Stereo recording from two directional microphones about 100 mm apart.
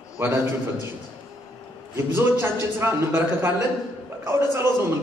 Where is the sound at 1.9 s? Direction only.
25° right (ahead or behind).